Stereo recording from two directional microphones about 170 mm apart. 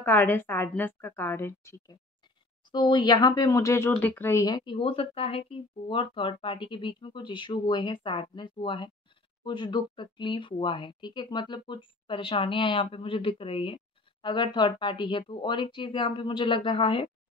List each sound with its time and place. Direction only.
0.0 s a woman's voice: 10° left (ahead or behind)
2.7 s speech: 25° left (ahead or behind)